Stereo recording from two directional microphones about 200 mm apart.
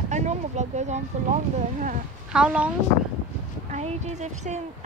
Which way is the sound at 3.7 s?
35° right (ahead or behind).